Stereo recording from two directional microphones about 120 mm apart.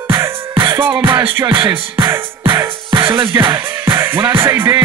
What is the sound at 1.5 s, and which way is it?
Music, 40° right (ahead or behind).